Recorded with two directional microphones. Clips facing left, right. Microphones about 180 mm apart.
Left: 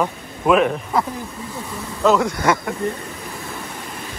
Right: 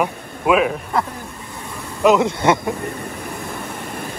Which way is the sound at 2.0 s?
20° right (ahead or behind).